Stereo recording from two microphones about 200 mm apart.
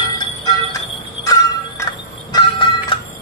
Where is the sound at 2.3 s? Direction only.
25° left (ahead or behind).